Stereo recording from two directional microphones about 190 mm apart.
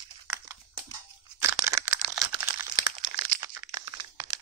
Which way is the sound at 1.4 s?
15° right (ahead or behind).